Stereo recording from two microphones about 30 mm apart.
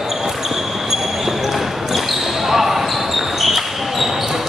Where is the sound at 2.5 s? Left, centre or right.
Centre.